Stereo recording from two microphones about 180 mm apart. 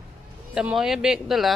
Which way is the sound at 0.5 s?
5° right (ahead or behind).